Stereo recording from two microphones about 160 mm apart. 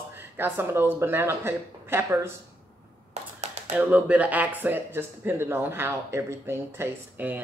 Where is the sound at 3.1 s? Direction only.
45° right (ahead or behind).